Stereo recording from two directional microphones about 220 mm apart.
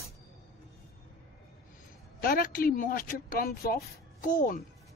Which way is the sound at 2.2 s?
40° left (ahead or behind).